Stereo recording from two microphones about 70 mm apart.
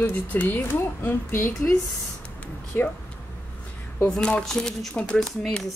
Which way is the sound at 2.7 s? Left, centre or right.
Left.